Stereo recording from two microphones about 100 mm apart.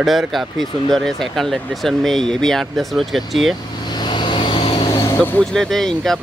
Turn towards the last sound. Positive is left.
turn(degrees=5)  # may be behind; listen again after turning